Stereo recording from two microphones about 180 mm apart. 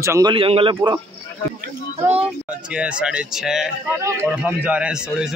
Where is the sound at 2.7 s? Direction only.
5° right (ahead or behind).